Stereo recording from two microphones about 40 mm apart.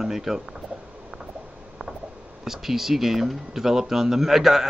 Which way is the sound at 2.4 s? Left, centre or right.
Centre.